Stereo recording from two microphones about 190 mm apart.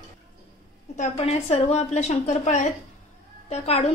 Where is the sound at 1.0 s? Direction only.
30° left (ahead or behind).